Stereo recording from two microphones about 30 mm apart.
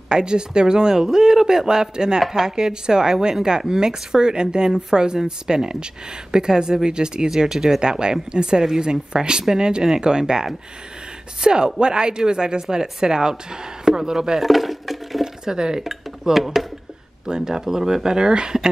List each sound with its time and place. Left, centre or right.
0.1 s speech: right
7.8 s speech: right
11.4 s speech: right
14.4 s a sound: centre
15.4 s speech: right
16.3 s speech: centre
17.3 s speech: centre